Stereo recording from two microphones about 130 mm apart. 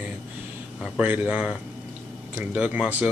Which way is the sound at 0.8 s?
10° right (ahead or behind).